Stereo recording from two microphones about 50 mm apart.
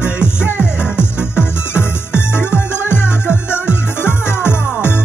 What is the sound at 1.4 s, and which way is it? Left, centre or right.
Music, left.